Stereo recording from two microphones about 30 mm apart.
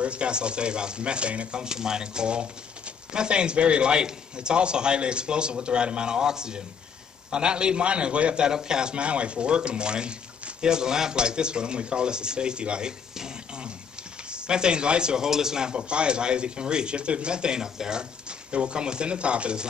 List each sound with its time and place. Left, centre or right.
0.0 s speech: right
1.5 s speech: right
8.5 s speech: right
8.9 s speech: right
14.3 s speech: right
15.2 s a man's voice: centre
15.7 s speech: right
18.5 s speech: right